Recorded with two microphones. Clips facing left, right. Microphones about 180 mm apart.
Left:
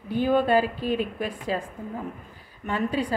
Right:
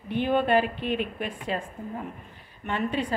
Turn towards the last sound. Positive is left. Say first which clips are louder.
# left 2 dB
turn(degrees=40)  # may be behind; listen again after turning